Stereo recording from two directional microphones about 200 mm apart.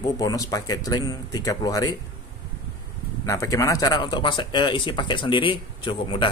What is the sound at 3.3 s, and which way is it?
Speech, 15° left (ahead or behind).